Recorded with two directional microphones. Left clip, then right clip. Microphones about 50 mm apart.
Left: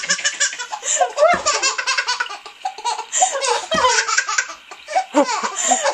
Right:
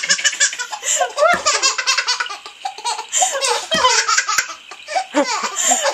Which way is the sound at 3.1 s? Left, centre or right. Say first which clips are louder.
Even; centre.